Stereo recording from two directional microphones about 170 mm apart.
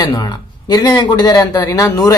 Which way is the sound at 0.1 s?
25° left (ahead or behind).